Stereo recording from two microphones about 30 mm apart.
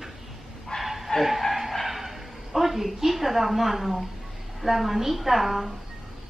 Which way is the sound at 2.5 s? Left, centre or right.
Centre.